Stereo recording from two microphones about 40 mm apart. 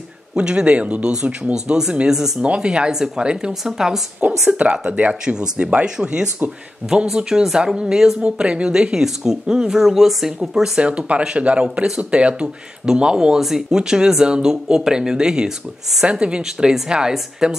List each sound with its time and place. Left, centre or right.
0.4 s speech: right
2.4 s speech: right
3.6 s speech: centre
4.2 s speech: right
5.2 s speech: centre
6.8 s speech: right
7.2 s speech: right
8.2 s speech: right; by 10.7 s centre
10.8 s speech: right
13.4 s speech: centre